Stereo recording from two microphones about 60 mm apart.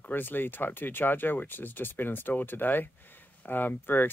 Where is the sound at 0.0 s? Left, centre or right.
Left.